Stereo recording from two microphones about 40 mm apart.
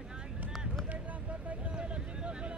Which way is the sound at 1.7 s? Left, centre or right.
Right.